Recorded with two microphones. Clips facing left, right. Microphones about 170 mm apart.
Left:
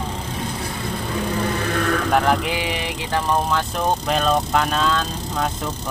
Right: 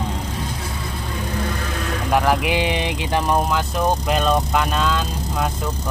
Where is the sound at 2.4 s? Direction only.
20° right (ahead or behind).